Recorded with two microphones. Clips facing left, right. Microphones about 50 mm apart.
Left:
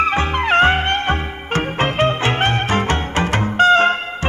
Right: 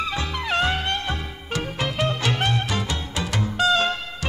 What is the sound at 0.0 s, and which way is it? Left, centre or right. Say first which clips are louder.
Music: left 10 dB; left.